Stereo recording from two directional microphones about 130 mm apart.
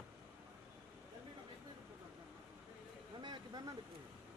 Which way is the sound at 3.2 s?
35° right (ahead or behind).